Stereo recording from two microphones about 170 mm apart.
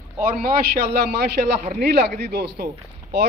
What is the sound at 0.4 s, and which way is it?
A man's voice, 70° right (ahead or behind).